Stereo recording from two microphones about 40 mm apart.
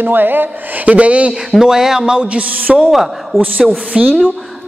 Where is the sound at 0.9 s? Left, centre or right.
Right.